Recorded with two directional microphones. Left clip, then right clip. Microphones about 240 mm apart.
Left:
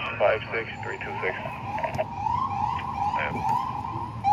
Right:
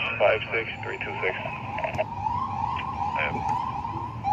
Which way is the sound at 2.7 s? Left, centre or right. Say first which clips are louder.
Left 1 dB; centre.